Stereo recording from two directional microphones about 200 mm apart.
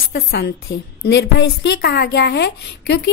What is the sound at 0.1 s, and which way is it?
A woman's voice, 50° left (ahead or behind).